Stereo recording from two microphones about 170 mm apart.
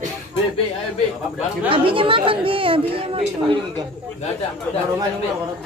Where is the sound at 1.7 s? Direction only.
30° right (ahead or behind).